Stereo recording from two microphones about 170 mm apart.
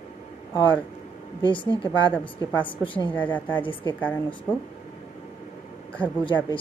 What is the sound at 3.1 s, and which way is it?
A woman's voice, 10° left (ahead or behind).